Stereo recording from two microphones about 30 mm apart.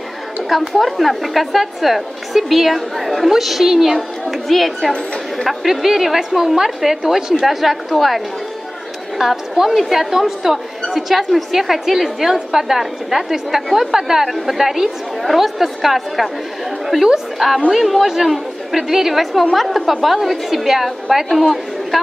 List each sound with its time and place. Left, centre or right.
0.5 s a woman's voice: centre
3.9 s a woman's voice: centre
7.4 s a woman's voice: centre
9.2 s a woman's voice: centre
14.3 s a woman's voice: centre
17.7 s a woman's voice: centre
18.0 s a woman's voice: centre
18.3 s chatter: centre
18.9 s a woman's voice: centre